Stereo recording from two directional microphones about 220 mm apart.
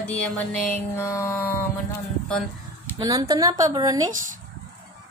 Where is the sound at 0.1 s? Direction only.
5° left (ahead or behind).